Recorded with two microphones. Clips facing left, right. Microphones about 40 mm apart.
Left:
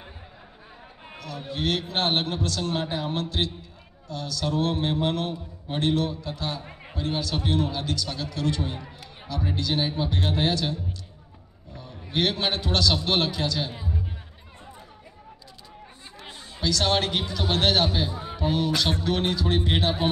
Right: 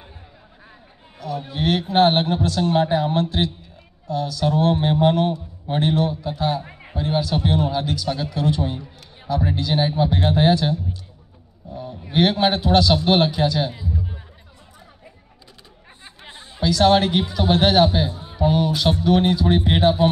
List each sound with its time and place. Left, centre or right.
1.2 s a man's voice: centre
13.7 s music: left
16.2 s a sound: right
16.6 s a man's voice: centre